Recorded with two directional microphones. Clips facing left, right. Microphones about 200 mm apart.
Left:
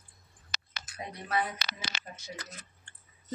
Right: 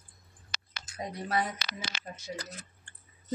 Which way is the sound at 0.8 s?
30° right (ahead or behind).